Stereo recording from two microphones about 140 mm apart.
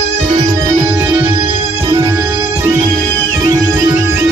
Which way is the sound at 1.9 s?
20° right (ahead or behind).